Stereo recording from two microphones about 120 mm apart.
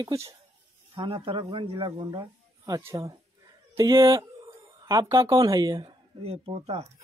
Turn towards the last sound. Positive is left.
turn(degrees=-55)  # may be behind; listen again after turning